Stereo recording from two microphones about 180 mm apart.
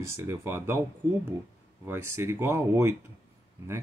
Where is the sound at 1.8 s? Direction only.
15° right (ahead or behind).